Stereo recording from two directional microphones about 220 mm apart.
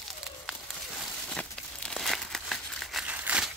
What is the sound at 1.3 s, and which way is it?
Crumpling, 5° left (ahead or behind).